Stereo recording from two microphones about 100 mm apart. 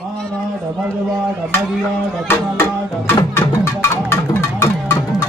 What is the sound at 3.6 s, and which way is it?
Music, 25° left (ahead or behind).